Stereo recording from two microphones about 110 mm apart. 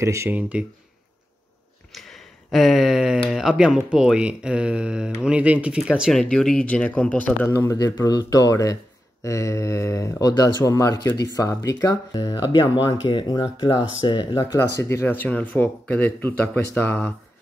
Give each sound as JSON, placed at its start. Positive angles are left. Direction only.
{"t": 0.0, "sound": "speech", "side_deg": -25}
{"t": 0.3, "sound": "speech", "side_deg": -10}
{"t": 1.9, "sound": "a sound", "side_deg": 0}
{"t": 3.3, "sound": "speech", "side_deg": -5}
{"t": 6.1, "sound": "speech", "side_deg": 5}
{"t": 7.5, "sound": "speech", "side_deg": 30}
{"t": 14.3, "sound": "speech", "side_deg": 25}